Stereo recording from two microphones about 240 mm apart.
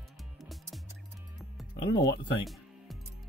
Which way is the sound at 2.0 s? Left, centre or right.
Left.